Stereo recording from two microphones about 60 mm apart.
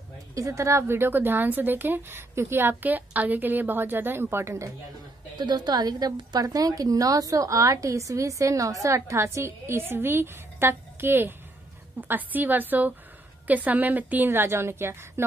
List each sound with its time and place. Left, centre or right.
0.3 s a woman's voice: right
0.9 s speech: right
5.7 s a woman's voice: right